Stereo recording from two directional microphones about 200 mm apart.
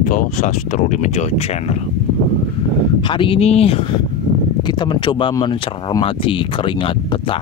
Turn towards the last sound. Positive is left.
turn(degrees=25)  # may be behind; listen again after turning